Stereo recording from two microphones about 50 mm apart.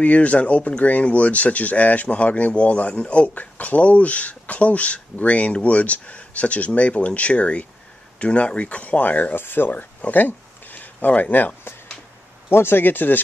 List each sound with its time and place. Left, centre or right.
0.0 s speech: left
9.4 s speech: left
9.7 s speech: left
12.4 s speech: left